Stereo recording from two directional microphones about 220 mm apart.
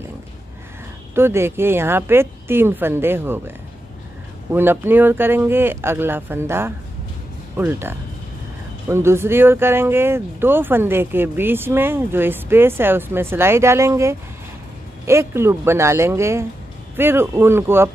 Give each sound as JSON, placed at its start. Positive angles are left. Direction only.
{"t": 1.1, "sound": "speech", "side_deg": -10}